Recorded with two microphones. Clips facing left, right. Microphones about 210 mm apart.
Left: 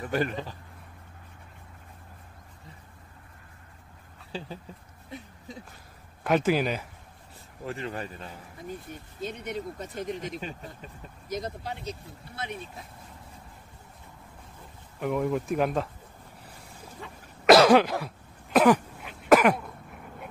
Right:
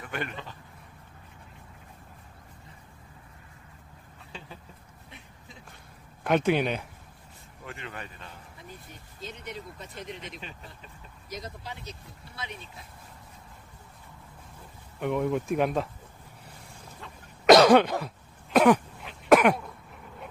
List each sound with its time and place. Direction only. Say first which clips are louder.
0.0 s speech: left 7 dB; 35° left (ahead or behind)
4.3 s speech: left 8 dB; 35° left (ahead or behind)
6.2 s speech: even; centre (ahead or behind)
7.6 s speech: left 7 dB; 35° left (ahead or behind)
9.2 s speech: left 6 dB; 45° left (ahead or behind)
15.0 s speech: even; centre (ahead or behind)
17.0 s cough: even; centre (ahead or behind)